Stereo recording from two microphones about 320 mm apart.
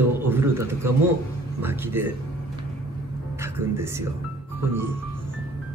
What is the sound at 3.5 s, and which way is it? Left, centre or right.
Speech, centre.